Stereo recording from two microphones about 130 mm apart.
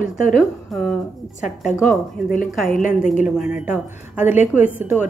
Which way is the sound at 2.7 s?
90° left.